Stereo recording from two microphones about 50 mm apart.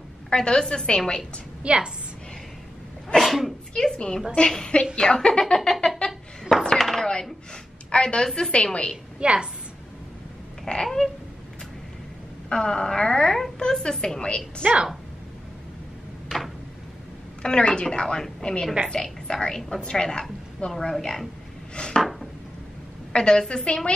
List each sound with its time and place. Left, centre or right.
0.3 s a woman's voice: centre
1.6 s a woman's voice: centre
3.2 s speech: centre
3.7 s a woman's voice: centre
6.8 s chopping: centre
7.1 s a sound: centre
7.9 s a woman's voice: centre
9.2 s a woman's voice: right
10.7 s a woman's voice: centre
12.4 s a woman's voice: centre
14.6 s a woman's voice: right
17.4 s a woman's voice: centre
23.1 s a woman's voice: centre